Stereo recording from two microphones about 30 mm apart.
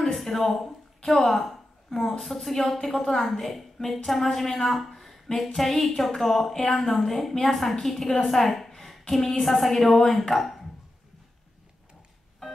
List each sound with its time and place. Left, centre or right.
0.0 s a woman's voice: centre
4.9 s a sound: centre
5.5 s a woman's voice: centre
6.5 s speech: left
6.8 s a woman's voice: centre